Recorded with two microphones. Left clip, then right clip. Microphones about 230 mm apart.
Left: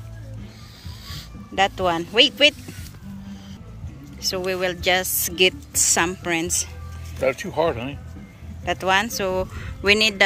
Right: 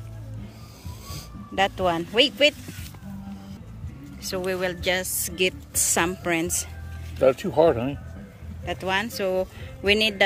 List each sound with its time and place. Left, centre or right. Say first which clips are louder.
1.5 s a woman's voice: left 2 dB; centre
4.2 s a woman's voice: left 3 dB; centre
7.2 s speech: right 3 dB; right
8.6 s a woman's voice: left 6 dB; centre